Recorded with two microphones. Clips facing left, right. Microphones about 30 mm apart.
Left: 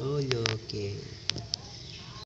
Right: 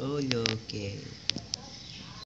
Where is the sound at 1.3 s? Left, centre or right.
Right.